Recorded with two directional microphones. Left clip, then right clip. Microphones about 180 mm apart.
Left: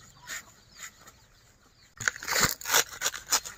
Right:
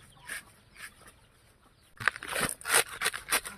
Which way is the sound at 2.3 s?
40° left (ahead or behind).